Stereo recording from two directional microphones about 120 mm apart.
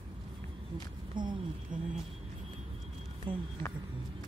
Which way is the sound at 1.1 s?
40° right (ahead or behind).